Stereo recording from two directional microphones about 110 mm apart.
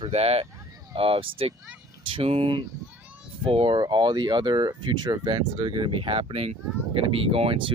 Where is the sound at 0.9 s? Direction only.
55° right (ahead or behind).